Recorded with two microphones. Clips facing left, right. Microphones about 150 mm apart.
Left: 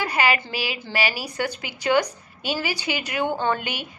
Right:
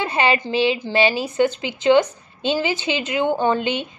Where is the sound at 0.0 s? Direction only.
25° right (ahead or behind).